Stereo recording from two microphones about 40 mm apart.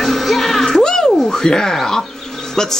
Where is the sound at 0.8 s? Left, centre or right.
Centre.